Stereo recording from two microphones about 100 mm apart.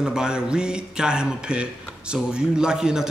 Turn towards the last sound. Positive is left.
turn(degrees=-5)  # may be behind; listen again after turning